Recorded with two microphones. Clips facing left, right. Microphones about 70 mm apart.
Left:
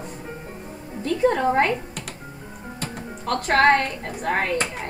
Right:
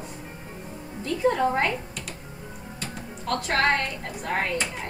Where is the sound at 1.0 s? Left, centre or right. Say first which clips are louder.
Left 3 dB; left.